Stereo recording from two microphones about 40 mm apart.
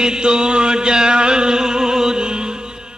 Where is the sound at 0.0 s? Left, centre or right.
Centre.